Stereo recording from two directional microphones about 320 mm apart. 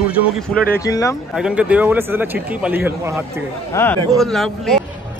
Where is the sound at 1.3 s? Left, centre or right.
Centre.